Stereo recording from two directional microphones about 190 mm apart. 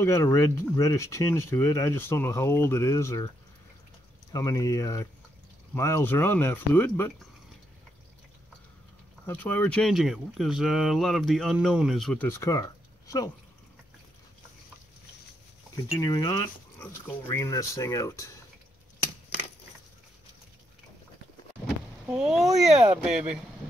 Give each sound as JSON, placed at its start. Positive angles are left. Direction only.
{"t": 0.0, "sound": "speech", "side_deg": 15}
{"t": 4.3, "sound": "speech", "side_deg": 20}
{"t": 9.2, "sound": "speech", "side_deg": 10}
{"t": 16.0, "sound": "speech", "side_deg": 20}
{"t": 21.6, "sound": "speech", "side_deg": 0}